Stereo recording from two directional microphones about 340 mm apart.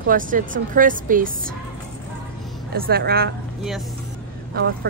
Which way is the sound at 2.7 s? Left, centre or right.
Right.